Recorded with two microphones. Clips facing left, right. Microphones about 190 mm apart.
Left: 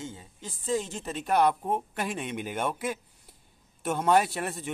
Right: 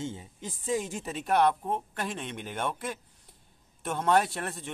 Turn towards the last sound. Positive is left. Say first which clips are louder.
# left 2 dB
turn(degrees=5)  # may be behind; listen again after turning